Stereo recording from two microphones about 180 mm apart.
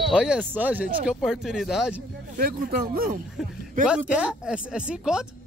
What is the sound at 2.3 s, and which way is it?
Speech, 55° right (ahead or behind).